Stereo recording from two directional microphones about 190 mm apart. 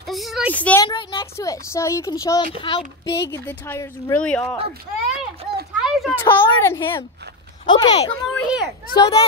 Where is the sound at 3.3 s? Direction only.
10° left (ahead or behind).